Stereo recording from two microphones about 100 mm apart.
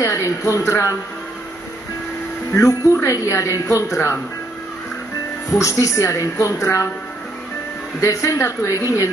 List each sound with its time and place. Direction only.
0.0 s speech: 30° left (ahead or behind)
2.5 s speech: 30° left (ahead or behind)
5.5 s speech: 30° left (ahead or behind)
8.0 s speech: 30° left (ahead or behind)